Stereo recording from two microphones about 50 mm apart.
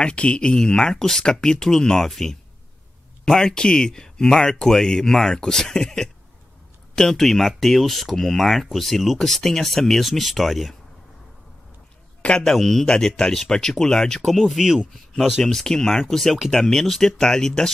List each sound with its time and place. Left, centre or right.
0.0 s speech: left; by 10.8 s centre
12.2 s a sound: left
12.4 s speech: centre
15.4 s speech: centre